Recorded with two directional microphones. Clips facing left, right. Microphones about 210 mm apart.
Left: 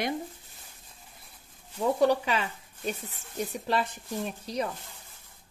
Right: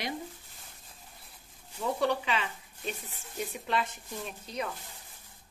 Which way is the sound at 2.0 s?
40° left (ahead or behind).